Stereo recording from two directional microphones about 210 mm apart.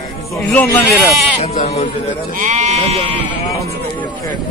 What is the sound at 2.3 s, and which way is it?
Speech, 35° right (ahead or behind).